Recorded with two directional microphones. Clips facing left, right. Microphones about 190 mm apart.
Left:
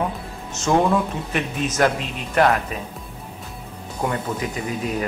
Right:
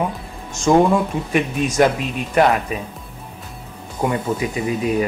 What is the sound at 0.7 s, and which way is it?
Speech, 30° right (ahead or behind).